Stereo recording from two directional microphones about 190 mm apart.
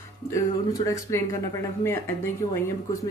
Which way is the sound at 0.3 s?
15° left (ahead or behind).